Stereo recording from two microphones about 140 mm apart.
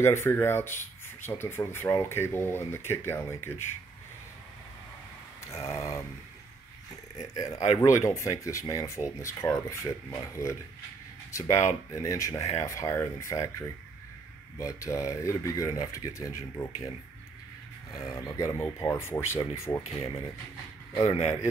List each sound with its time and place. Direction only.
0.0 s speech: 20° left (ahead or behind)
5.4 s a sound: 20° left (ahead or behind)
7.3 s speech: 25° left (ahead or behind)
17.9 s speech: 25° left (ahead or behind)
21.0 s speech: 45° left (ahead or behind)